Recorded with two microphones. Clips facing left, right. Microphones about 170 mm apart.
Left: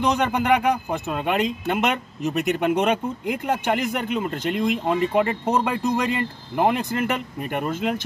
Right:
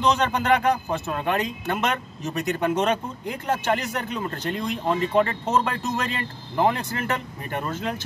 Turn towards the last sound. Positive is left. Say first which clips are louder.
# left 4 dB
turn(degrees=15)  # may be behind; listen again after turning